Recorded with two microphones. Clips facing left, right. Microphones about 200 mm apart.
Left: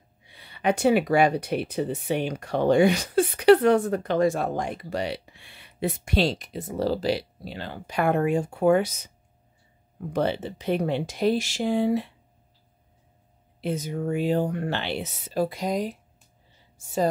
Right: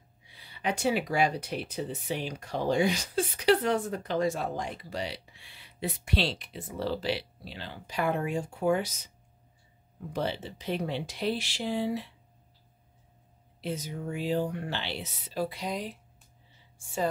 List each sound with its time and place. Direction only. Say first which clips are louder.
0.3 s speech: left 8 dB; 60° left (ahead or behind)
13.6 s a woman's voice: left 7 dB; 55° left (ahead or behind); by 17.1 s 40° left (ahead or behind)